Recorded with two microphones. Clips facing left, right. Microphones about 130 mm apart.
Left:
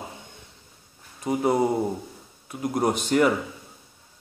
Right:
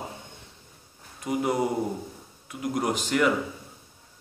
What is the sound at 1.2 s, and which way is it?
Speech, 30° left (ahead or behind).